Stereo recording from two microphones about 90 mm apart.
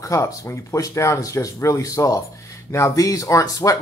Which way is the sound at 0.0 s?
35° left (ahead or behind).